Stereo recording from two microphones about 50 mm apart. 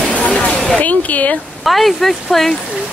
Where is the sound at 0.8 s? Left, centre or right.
Left.